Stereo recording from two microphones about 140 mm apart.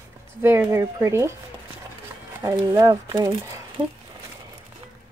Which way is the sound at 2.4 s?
20° right (ahead or behind).